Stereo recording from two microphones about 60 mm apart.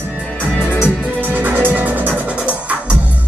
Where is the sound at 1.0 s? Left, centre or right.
Right.